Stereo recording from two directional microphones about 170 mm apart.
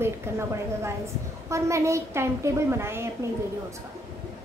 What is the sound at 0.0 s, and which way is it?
A woman's voice, 15° right (ahead or behind).